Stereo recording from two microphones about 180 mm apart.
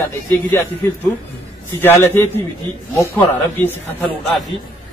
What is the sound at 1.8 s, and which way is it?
A man's voice, 10° left (ahead or behind).